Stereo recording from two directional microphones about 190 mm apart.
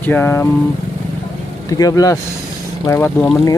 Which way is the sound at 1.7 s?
20° left (ahead or behind).